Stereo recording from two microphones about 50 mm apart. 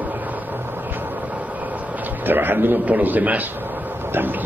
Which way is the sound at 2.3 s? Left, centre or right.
Right.